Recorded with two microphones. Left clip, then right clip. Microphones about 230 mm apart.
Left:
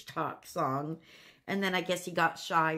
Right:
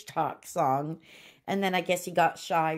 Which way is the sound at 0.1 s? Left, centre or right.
Centre.